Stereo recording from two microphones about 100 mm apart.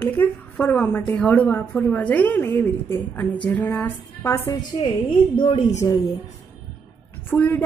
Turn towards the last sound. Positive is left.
turn(degrees=20)  # may be behind; listen again after turning